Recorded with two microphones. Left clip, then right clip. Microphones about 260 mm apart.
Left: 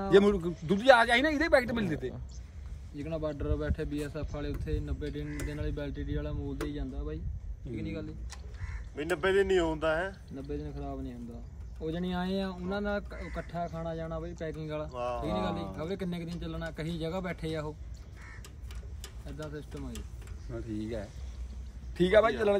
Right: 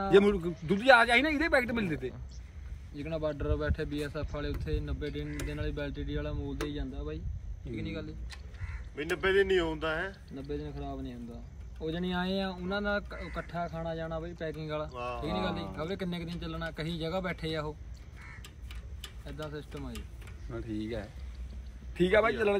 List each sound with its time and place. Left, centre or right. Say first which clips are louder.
0.0 s a man's voice: even; centre
8.9 s speech: even; left
10.3 s speech: right 1 dB; centre
15.0 s speech: left 3 dB; left
15.2 s speech: left 1 dB; centre
19.3 s a man's voice: right 1 dB; centre